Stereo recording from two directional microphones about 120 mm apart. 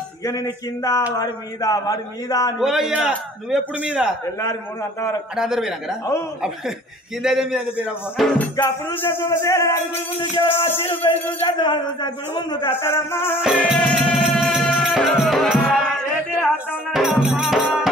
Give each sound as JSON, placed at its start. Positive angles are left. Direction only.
{"t": 0.2, "sound": "music", "side_deg": 25}
{"t": 2.6, "sound": "a man's voice", "side_deg": -5}
{"t": 5.3, "sound": "a man's voice", "side_deg": -5}
{"t": 7.2, "sound": "a man's voice", "side_deg": -5}
{"t": 8.4, "sound": "music", "side_deg": 15}
{"t": 11.4, "sound": "a man's voice", "side_deg": 40}
{"t": 12.9, "sound": "music", "side_deg": 20}
{"t": 13.4, "sound": "music", "side_deg": -5}
{"t": 13.7, "sound": "music", "side_deg": 5}